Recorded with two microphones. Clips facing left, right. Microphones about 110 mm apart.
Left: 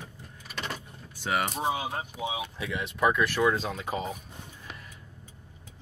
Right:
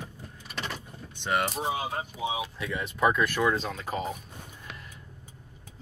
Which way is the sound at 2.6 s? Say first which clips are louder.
Even; centre (ahead or behind).